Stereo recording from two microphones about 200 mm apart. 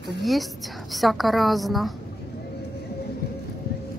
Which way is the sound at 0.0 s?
Centre (ahead or behind).